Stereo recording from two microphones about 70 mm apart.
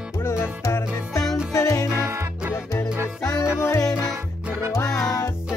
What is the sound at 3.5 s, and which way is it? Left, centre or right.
Music, left.